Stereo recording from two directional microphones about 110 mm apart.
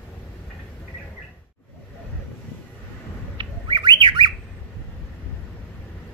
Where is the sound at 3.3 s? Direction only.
45° right (ahead or behind).